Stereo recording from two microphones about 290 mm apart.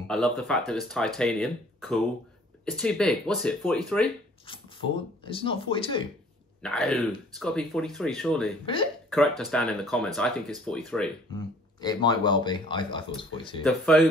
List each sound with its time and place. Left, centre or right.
0.1 s speech: centre
4.5 s speech: centre
6.6 s speech: centre
11.3 s speech: centre
13.7 s speech: centre